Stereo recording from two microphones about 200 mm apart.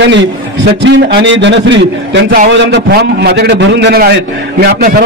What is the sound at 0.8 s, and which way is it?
A man's voice, 65° right (ahead or behind).